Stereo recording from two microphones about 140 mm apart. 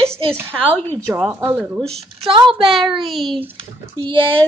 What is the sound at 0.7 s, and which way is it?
Speech, 10° left (ahead or behind).